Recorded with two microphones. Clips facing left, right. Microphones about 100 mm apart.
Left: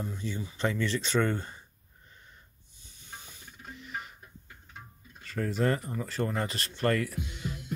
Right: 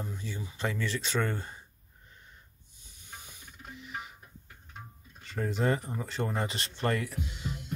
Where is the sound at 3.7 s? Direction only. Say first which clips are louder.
Left 1 dB; 10° right (ahead or behind).